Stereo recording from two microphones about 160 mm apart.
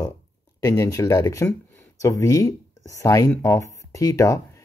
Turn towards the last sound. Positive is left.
turn(degrees=20)  # may be behind; listen again after turning